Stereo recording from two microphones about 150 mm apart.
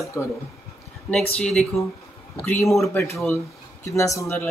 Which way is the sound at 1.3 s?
5° left (ahead or behind).